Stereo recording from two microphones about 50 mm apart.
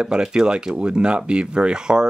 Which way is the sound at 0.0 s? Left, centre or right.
Centre.